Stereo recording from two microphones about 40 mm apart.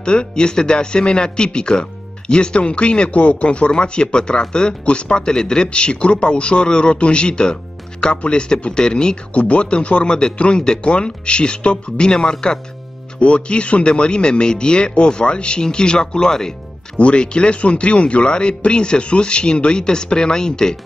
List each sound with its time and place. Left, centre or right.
0.0 s speech: left
9.3 s speech: left; by 20.7 s centre